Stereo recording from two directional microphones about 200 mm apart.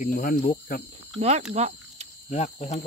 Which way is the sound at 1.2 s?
35° right (ahead or behind).